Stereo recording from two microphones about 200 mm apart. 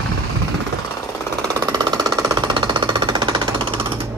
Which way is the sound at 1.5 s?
20° right (ahead or behind).